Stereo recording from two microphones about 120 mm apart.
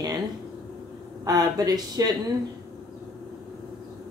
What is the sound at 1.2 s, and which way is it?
Speech, 30° right (ahead or behind).